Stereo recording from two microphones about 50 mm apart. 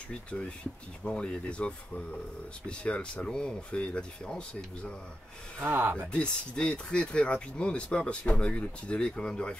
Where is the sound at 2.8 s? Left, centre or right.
Left.